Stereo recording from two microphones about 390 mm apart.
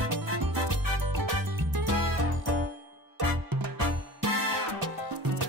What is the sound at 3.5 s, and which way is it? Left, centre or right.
Music, right.